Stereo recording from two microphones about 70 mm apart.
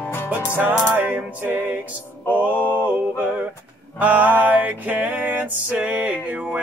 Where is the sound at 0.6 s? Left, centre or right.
Right.